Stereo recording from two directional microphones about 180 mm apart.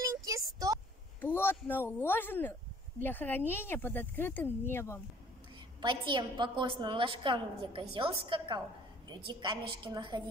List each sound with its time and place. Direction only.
0.0 s a sound: 20° right (ahead or behind)
1.2 s speech: 10° left (ahead or behind)
5.8 s a woman's voice: 25° right (ahead or behind)